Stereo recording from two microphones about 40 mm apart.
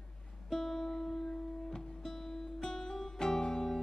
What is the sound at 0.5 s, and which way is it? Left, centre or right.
Music, centre.